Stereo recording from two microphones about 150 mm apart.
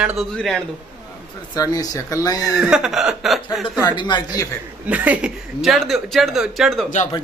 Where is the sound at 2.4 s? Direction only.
5° right (ahead or behind).